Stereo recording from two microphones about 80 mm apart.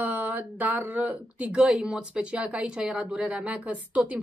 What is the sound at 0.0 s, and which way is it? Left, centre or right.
Speech, right.